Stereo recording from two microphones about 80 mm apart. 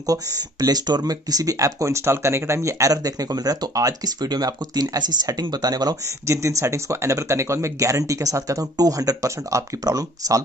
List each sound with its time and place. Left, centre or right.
0.0 s speech: right
6.2 s speech: right